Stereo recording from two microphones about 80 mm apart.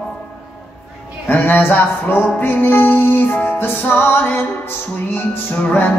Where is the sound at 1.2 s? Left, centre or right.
Left.